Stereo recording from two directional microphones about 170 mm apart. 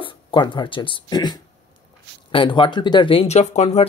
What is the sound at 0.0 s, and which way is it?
Speech, 30° left (ahead or behind).